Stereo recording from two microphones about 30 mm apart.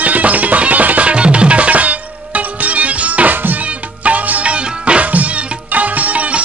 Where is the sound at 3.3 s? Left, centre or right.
Right.